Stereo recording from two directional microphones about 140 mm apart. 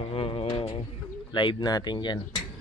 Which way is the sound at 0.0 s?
45° left (ahead or behind).